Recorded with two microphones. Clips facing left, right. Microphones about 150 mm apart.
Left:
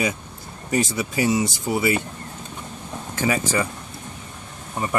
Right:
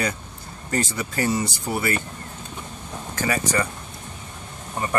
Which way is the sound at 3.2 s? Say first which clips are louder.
Left 2 dB; 15° left (ahead or behind).